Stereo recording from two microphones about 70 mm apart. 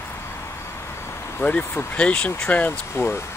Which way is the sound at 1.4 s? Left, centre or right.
Left.